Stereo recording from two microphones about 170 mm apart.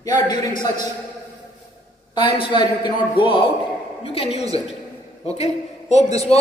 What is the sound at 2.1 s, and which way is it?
A woman's voice, 30° left (ahead or behind).